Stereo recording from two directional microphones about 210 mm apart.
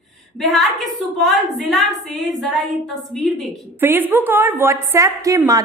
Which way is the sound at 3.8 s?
10° right (ahead or behind).